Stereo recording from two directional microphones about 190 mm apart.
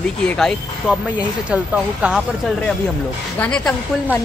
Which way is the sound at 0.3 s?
5° left (ahead or behind).